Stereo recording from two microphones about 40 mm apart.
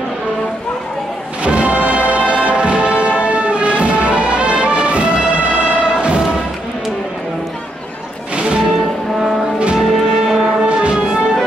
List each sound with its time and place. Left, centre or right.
1.4 s music: right
8.4 s music: right
9.8 s music: centre
10.4 s music: right